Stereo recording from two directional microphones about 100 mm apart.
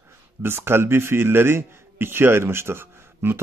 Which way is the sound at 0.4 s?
25° right (ahead or behind).